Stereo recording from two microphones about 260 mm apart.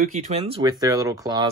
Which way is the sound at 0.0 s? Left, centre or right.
Right.